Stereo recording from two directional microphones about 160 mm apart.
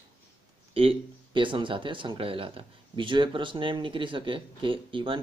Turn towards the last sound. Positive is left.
turn(degrees=-30)  # may be behind; listen again after turning